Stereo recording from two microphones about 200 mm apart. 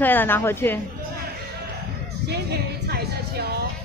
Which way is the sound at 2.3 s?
55° right (ahead or behind).